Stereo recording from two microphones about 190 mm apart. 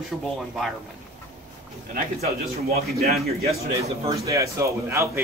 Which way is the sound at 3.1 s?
35° right (ahead or behind).